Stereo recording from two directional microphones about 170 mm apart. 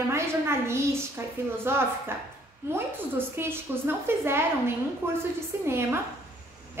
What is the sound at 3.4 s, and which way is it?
A woman's voice, 15° right (ahead or behind).